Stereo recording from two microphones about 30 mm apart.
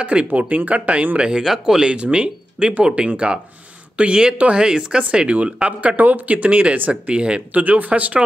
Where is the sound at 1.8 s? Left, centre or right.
Right.